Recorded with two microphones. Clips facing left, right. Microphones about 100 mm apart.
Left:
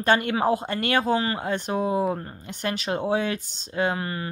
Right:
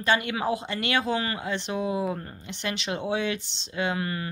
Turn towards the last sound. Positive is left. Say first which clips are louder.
# left 3 dB
turn(degrees=30)  # may be behind; listen again after turning